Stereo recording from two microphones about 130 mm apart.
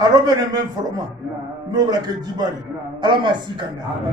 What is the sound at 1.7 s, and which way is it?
A man's voice, 30° right (ahead or behind).